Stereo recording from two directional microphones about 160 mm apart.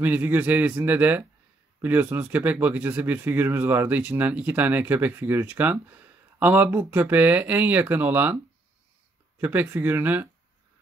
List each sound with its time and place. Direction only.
0.0 s speech: 10° right (ahead or behind)
9.4 s speech: 10° right (ahead or behind)